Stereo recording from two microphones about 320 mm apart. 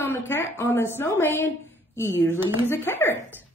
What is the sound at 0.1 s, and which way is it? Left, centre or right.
A woman's voice, centre.